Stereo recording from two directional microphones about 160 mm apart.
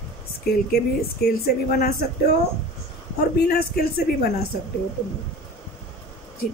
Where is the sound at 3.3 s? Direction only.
70° left (ahead or behind).